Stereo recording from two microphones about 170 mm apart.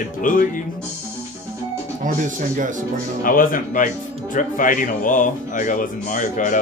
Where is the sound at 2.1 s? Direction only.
50° right (ahead or behind).